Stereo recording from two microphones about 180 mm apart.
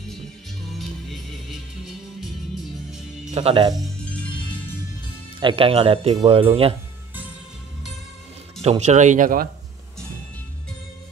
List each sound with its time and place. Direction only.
0.7 s music: centre (ahead or behind)
3.3 s speech: 35° right (ahead or behind)
3.7 s music: 5° left (ahead or behind)
5.4 s speech: 30° right (ahead or behind)
8.6 s speech: 40° right (ahead or behind)